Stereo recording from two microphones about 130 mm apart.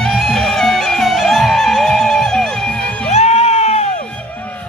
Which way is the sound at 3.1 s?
55° left (ahead or behind).